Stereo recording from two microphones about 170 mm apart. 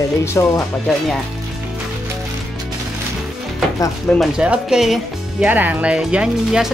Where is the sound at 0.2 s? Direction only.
15° left (ahead or behind).